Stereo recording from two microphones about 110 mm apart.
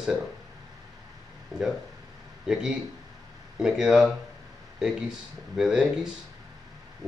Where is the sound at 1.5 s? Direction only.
35° right (ahead or behind).